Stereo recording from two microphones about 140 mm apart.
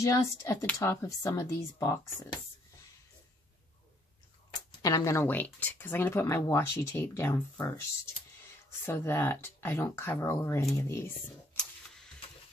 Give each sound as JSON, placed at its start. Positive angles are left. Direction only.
{"t": 0.0, "sound": "speech", "side_deg": 20}
{"t": 4.6, "sound": "speech", "side_deg": 25}
{"t": 8.8, "sound": "speech", "side_deg": 15}
{"t": 11.5, "sound": "a sound", "side_deg": 5}